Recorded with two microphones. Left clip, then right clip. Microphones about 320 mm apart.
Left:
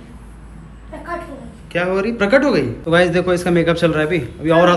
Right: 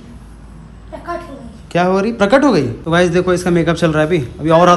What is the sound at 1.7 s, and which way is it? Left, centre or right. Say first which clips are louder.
A woman's voice: right 4 dB; centre.